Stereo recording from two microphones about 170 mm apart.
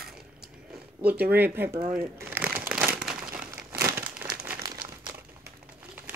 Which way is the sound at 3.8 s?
20° right (ahead or behind).